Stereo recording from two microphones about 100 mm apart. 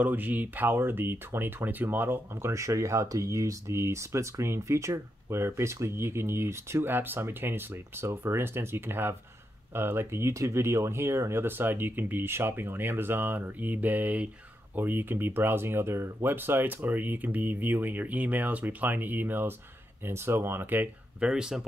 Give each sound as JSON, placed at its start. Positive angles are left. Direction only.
{"t": 0.0, "sound": "speech", "side_deg": -15}